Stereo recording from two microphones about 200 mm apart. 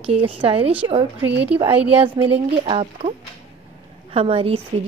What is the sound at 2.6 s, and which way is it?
Speech, 30° right (ahead or behind).